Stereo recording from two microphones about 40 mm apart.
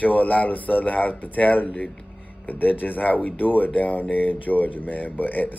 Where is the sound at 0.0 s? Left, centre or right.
Left.